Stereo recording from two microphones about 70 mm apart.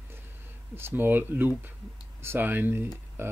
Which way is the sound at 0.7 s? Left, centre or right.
Right.